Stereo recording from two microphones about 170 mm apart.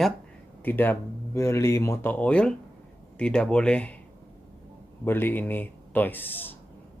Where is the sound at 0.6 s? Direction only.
10° left (ahead or behind).